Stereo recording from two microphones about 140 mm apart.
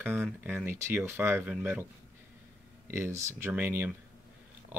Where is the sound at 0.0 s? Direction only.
15° right (ahead or behind).